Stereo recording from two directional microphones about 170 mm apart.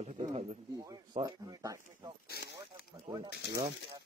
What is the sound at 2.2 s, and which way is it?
Speech, 70° left (ahead or behind).